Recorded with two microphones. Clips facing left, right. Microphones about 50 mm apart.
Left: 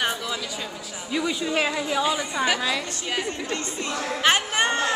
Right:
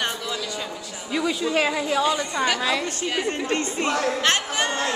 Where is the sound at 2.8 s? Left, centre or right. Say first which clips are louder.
Right 3 dB; right.